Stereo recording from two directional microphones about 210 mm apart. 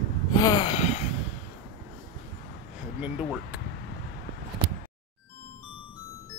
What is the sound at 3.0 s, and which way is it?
Speech, 5° right (ahead or behind).